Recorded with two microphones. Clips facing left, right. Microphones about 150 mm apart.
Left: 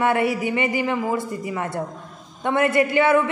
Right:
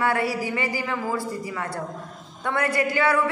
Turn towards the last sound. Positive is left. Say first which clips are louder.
# left 4 dB
turn(degrees=20)  # may be behind; listen again after turning